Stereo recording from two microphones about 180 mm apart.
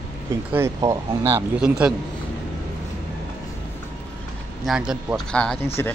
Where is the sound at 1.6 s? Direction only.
5° right (ahead or behind).